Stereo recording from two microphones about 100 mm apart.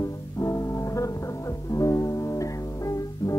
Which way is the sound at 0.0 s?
30° left (ahead or behind).